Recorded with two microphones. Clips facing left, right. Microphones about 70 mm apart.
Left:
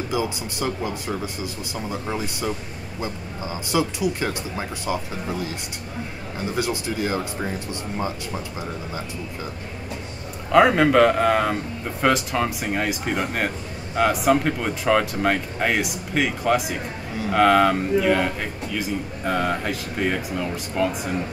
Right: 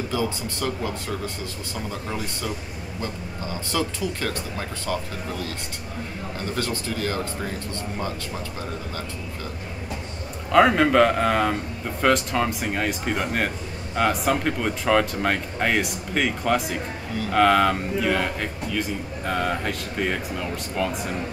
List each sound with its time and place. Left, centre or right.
0.1 s speech: centre
6.5 s speech: centre
10.5 s a man's voice: centre